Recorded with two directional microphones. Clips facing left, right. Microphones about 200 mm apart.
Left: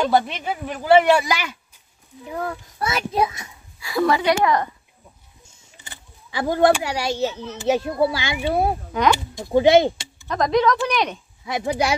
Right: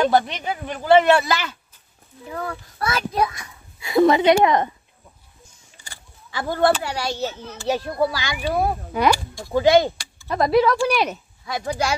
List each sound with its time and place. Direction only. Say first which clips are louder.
0.0 s a child's voice: right 1 dB; centre (ahead or behind); by 3.4 s 20° left (ahead or behind)
3.8 s a woman's voice: right 4 dB; 20° right (ahead or behind)
5.8 s a child's voice: left 1 dB; 20° left (ahead or behind)
10.2 s speech: right 1 dB; 10° right (ahead or behind)
11.4 s a child's voice: left 2 dB; 20° left (ahead or behind)